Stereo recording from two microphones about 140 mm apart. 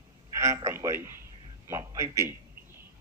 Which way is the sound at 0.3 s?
20° right (ahead or behind).